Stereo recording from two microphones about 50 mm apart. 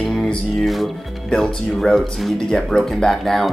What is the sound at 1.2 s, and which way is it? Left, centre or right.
Speech, centre.